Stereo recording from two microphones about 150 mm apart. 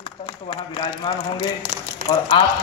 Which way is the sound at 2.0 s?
75° right (ahead or behind).